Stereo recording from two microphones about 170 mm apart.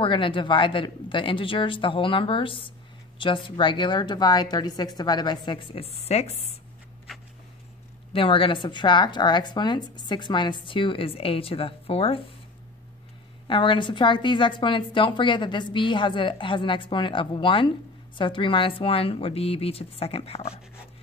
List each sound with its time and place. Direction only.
0.0 s a woman's voice: 30° left (ahead or behind)
8.1 s a woman's voice: 30° left (ahead or behind)
13.5 s a woman's voice: 30° left (ahead or behind)